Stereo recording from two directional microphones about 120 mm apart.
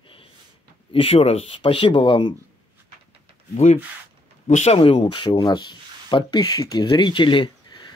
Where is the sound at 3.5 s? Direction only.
70° left (ahead or behind).